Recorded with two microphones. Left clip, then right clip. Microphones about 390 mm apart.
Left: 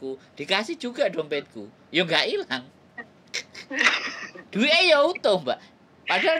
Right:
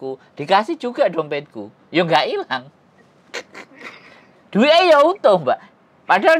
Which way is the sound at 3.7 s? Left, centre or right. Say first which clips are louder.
Left 16 dB; left.